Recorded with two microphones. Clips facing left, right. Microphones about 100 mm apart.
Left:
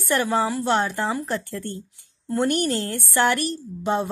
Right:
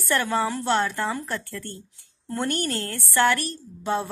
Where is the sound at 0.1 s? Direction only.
15° left (ahead or behind).